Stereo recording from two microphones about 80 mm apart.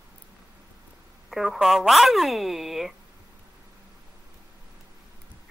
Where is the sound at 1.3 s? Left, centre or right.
Centre.